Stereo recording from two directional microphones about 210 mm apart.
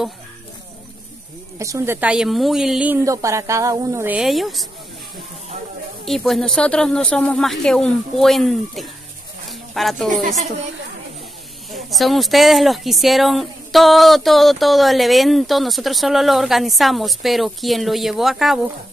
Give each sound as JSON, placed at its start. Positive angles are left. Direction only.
{"t": 1.6, "sound": "a woman's voice", "side_deg": -15}
{"t": 6.0, "sound": "a woman's voice", "side_deg": 0}
{"t": 11.7, "sound": "a woman's voice", "side_deg": 0}